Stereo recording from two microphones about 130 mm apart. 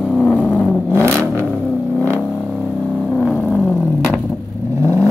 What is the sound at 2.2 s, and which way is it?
Vehicle, centre (ahead or behind).